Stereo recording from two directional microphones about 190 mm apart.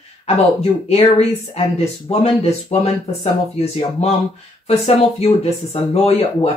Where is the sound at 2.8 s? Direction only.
30° left (ahead or behind).